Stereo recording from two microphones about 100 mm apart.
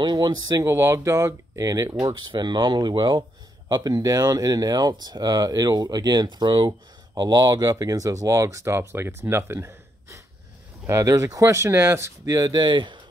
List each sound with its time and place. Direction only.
0.0 s speech: 45° right (ahead or behind)
2.1 s speech: 50° right (ahead or behind)